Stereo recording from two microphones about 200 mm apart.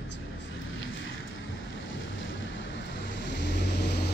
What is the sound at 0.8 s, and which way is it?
Vehicle, 70° left (ahead or behind).